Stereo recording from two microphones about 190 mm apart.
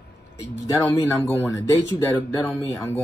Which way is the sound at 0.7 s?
20° left (ahead or behind).